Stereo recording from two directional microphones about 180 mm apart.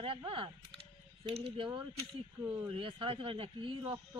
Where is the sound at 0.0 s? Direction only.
30° right (ahead or behind).